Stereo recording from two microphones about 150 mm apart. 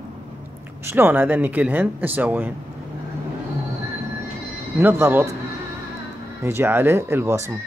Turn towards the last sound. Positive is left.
turn(degrees=-20)  # may be behind; listen again after turning